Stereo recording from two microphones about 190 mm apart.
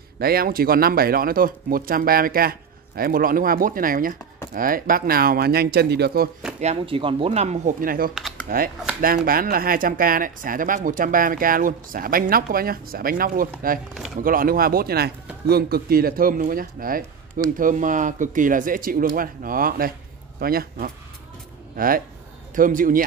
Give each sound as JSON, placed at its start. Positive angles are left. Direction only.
{"t": 0.2, "sound": "speech", "side_deg": -50}
{"t": 6.6, "sound": "speech", "side_deg": -30}
{"t": 8.1, "sound": "computer keyboard", "side_deg": 0}
{"t": 9.0, "sound": "speech", "side_deg": -50}